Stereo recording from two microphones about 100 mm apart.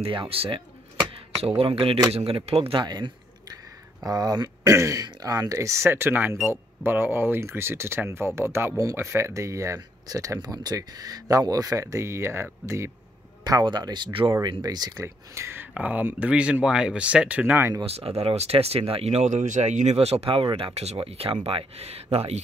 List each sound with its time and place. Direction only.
0.3 s speech: 70° right (ahead or behind)
1.6 s speech: 70° right (ahead or behind)
2.7 s speech: 50° right (ahead or behind); by 12.9 s 30° right (ahead or behind)
13.4 s speech: 45° right (ahead or behind)
15.0 s speech: 25° right (ahead or behind)
15.7 s speech: 15° right (ahead or behind)
17.8 s speech: 90° right